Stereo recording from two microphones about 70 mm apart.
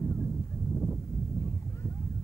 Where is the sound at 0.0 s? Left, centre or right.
Left.